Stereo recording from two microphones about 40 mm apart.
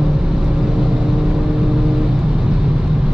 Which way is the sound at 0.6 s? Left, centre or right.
Centre.